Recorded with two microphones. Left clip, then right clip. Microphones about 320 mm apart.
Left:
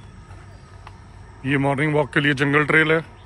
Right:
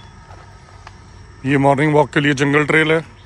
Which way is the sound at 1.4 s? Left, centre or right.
Centre.